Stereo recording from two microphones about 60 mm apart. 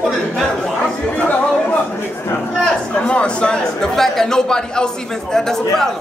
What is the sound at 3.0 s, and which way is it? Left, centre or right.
A man's voice, centre.